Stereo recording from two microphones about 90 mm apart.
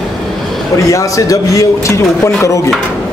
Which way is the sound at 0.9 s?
40° left (ahead or behind).